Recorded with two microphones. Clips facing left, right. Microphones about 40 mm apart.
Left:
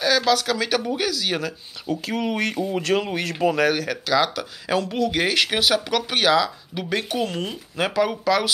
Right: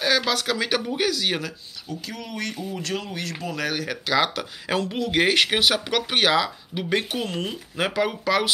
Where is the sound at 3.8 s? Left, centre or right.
Centre.